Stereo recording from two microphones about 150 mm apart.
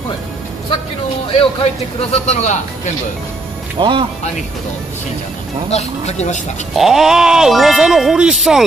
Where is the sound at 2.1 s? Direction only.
50° left (ahead or behind).